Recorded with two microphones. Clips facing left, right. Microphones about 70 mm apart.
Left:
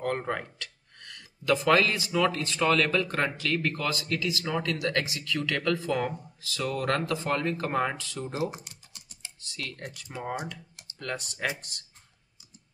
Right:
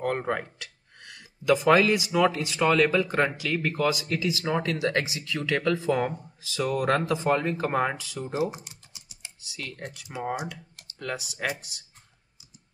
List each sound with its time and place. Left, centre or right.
0.0 s speech: centre
8.5 s typing: centre
10.0 s speech: centre